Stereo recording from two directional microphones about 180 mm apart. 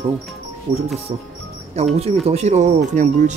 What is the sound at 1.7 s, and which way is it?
Speech, 35° right (ahead or behind).